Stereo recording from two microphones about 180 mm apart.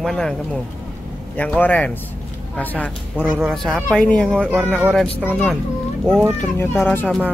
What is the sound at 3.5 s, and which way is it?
Speech, 5° left (ahead or behind).